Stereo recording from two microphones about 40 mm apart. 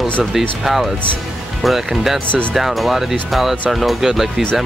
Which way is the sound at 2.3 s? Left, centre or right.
Left.